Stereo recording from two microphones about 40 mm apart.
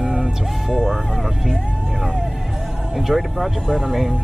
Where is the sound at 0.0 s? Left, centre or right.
Centre.